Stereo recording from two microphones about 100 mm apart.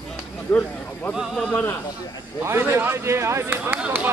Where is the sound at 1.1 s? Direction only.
5° right (ahead or behind).